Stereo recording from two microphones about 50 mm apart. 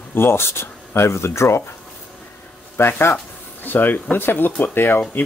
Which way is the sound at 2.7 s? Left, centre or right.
Left.